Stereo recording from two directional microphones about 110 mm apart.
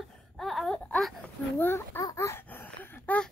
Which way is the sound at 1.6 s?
20° left (ahead or behind).